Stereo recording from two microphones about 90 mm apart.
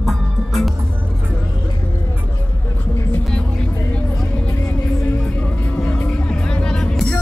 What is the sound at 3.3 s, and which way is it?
Music, 10° left (ahead or behind).